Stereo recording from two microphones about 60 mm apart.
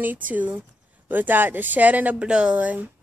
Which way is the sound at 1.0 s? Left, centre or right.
Right.